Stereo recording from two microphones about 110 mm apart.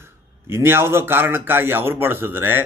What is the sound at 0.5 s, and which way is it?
Speech, 20° right (ahead or behind).